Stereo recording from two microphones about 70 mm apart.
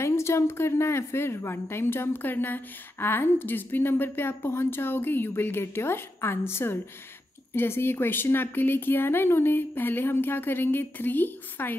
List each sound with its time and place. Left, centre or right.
0.0 s a woman's voice: left